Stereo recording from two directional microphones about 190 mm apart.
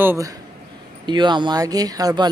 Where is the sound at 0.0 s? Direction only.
10° right (ahead or behind).